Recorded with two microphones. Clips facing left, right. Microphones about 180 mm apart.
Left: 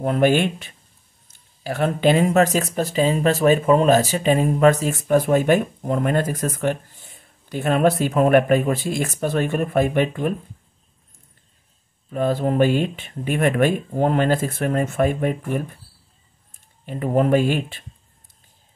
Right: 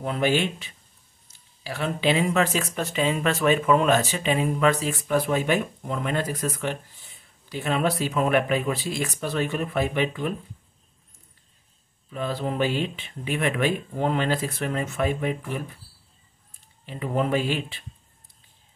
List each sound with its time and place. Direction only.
0.0 s speech: 50° left (ahead or behind)
12.1 s speech: 50° left (ahead or behind)
16.8 s speech: 50° left (ahead or behind)